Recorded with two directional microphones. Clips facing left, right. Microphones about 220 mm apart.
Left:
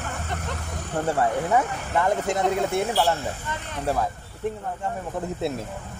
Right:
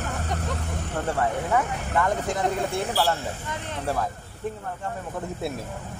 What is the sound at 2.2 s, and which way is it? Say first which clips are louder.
Speech: left 3 dB; 20° left (ahead or behind).